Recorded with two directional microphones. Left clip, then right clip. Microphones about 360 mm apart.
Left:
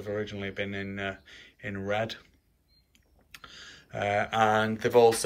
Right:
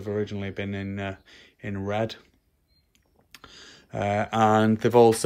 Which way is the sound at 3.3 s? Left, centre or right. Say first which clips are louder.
Even; centre.